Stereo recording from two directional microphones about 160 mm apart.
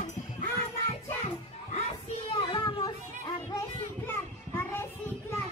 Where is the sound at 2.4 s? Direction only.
30° left (ahead or behind).